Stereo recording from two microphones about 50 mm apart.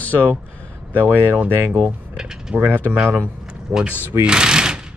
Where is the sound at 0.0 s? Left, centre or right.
Left.